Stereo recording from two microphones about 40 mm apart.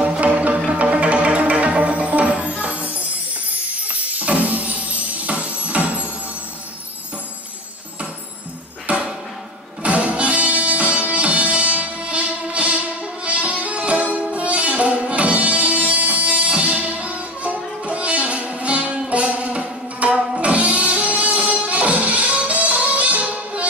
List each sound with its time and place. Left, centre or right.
0.0 s music: right
4.1 s music: right
8.9 s music: right